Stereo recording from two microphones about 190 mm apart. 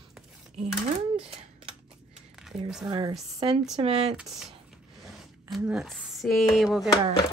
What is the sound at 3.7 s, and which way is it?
Speech, 30° right (ahead or behind).